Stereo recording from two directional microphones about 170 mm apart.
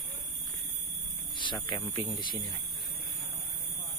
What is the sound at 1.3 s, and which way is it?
Speech, 25° left (ahead or behind).